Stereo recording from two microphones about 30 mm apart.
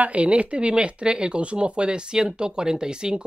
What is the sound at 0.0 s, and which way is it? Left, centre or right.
Speech, right.